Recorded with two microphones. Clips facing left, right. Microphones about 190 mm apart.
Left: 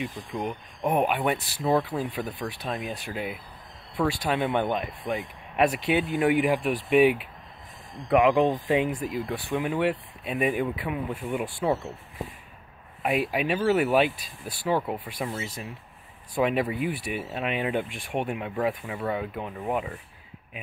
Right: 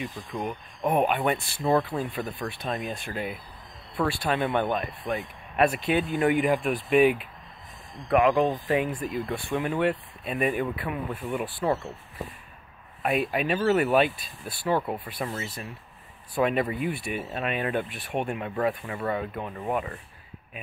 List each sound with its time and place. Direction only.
0.0 s speech: 10° left (ahead or behind)
8.1 s speech: 15° left (ahead or behind)
13.0 s speech: 10° left (ahead or behind)